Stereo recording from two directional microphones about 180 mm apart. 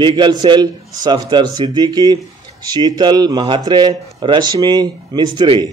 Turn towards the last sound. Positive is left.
turn(degrees=-25)  # may be behind; listen again after turning